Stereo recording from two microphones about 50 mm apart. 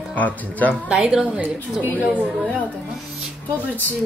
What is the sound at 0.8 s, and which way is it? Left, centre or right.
Speech, centre.